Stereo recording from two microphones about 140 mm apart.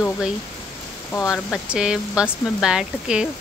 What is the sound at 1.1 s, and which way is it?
Speech, 20° left (ahead or behind).